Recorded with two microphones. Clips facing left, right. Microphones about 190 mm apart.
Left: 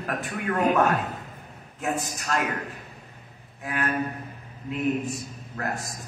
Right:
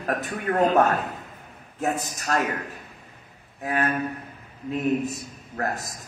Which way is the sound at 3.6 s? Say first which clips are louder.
Right 4 dB; 40° right (ahead or behind).